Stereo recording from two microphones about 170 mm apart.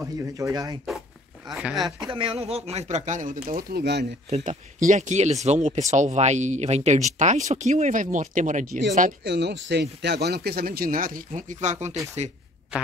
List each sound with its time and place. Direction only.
0.0 s speech: 20° right (ahead or behind)
1.5 s speech: centre (ahead or behind)
1.9 s speech: 30° right (ahead or behind); by 4.1 s 75° right (ahead or behind)
4.3 s speech: 45° right (ahead or behind)
9.2 s a man's voice: 85° right; by 12.0 s 40° right (ahead or behind)